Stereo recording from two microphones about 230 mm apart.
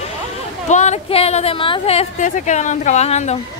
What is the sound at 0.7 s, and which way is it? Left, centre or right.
Speech, left.